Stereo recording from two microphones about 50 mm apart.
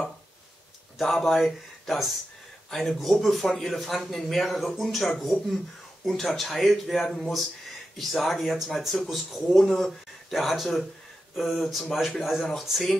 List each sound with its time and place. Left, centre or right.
0.9 s speech: centre
9.6 s speech: centre